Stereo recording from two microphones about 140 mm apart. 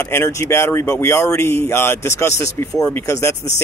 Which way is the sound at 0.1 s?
20° left (ahead or behind).